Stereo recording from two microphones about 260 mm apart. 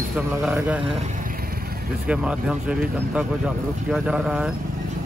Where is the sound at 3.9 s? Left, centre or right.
Centre.